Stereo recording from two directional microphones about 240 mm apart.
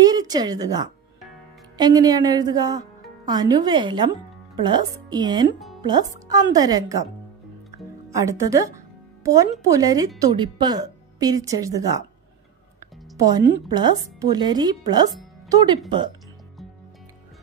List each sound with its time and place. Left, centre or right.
0.0 s a woman's voice: centre
5.8 s music: centre
6.1 s speech: centre
8.1 s speech: centre
13.1 s speech: centre